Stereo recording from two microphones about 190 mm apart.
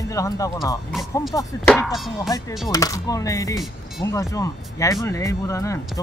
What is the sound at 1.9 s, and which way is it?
Music, centre (ahead or behind).